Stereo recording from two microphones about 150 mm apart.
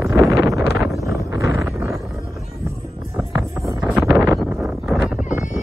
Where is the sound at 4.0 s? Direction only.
20° right (ahead or behind).